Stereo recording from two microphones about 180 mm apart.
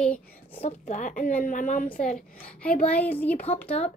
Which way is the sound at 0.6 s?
40° left (ahead or behind).